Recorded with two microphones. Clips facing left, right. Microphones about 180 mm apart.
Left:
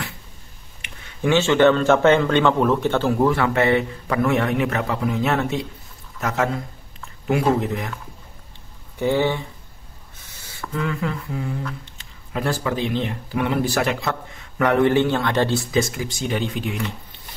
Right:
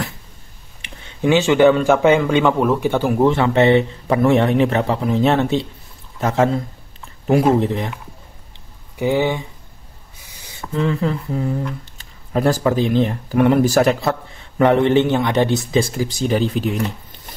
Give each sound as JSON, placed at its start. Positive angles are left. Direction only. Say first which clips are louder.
{"t": 0.8, "sound": "a sound", "louder": "right 4 dB", "side_deg": -25}
{"t": 1.3, "sound": "speech", "louder": "right 3 dB", "side_deg": -15}
{"t": 8.9, "sound": "speech", "louder": "right 2 dB", "side_deg": -15}
{"t": 10.3, "sound": "a sound", "louder": "right 5 dB", "side_deg": -15}
{"t": 11.8, "sound": "speech", "louder": "even", "side_deg": -40}
{"t": 15.8, "sound": "speech", "louder": "right 4 dB", "side_deg": -35}